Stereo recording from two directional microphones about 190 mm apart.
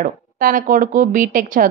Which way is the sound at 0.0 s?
45° right (ahead or behind).